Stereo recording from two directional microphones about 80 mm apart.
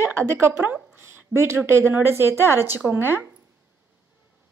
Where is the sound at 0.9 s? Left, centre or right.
Right.